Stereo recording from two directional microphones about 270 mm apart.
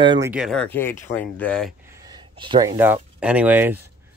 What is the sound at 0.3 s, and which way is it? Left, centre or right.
Speech, centre.